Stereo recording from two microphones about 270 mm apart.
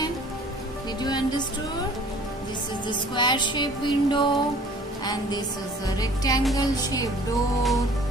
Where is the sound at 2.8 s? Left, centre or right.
Centre.